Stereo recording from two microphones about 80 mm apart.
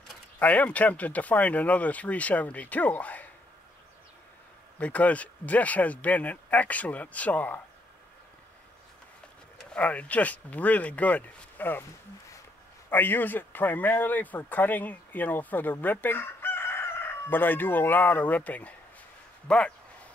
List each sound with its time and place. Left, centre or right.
0.4 s speech: centre
4.7 s speech: centre
9.7 s speech: centre
12.9 s speech: left